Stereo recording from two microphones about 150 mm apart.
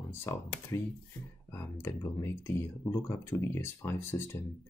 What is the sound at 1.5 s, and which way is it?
Speech, 15° left (ahead or behind).